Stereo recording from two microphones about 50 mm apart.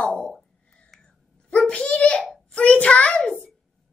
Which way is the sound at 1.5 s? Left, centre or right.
Centre.